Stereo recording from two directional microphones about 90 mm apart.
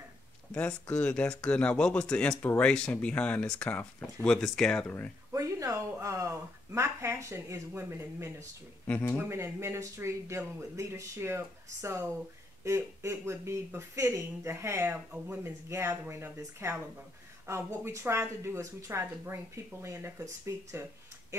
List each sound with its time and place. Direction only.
0.6 s speech: 15° left (ahead or behind)
5.3 s a woman's voice: 35° right (ahead or behind)